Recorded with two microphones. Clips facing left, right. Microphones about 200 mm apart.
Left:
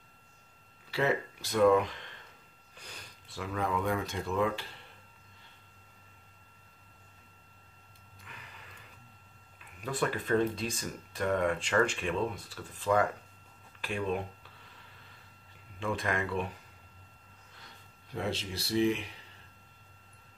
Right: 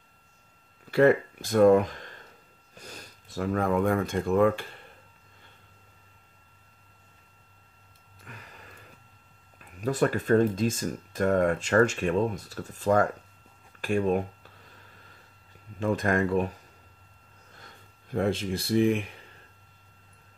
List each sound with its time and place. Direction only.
0.8 s speech: 50° right (ahead or behind)
8.3 s a sound: 45° right (ahead or behind)
9.6 s speech: 40° right (ahead or behind)
15.8 s speech: 45° right (ahead or behind)
17.6 s speech: 50° right (ahead or behind)